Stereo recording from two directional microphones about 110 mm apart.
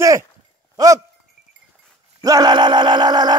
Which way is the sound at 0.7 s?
30° right (ahead or behind).